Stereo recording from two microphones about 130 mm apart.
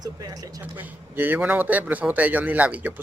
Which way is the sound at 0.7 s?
15° right (ahead or behind).